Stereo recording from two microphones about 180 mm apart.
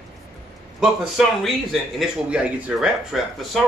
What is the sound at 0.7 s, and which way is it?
A man's voice, centre (ahead or behind).